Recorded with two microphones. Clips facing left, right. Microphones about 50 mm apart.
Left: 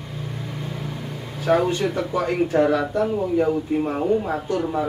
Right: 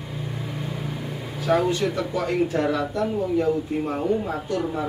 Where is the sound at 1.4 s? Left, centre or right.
Centre.